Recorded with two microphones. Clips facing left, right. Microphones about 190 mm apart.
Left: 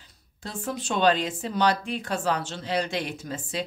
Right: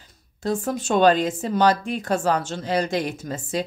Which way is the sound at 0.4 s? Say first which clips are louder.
Right 8 dB; 45° right (ahead or behind).